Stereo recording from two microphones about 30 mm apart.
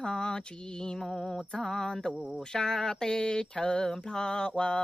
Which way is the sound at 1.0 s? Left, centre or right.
Centre.